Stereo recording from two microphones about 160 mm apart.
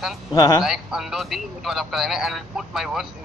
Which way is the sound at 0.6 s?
Centre (ahead or behind).